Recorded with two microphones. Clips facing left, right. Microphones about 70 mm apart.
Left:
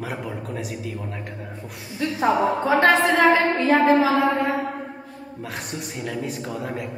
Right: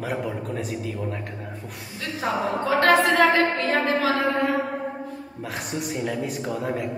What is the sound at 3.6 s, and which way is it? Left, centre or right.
Speech, centre.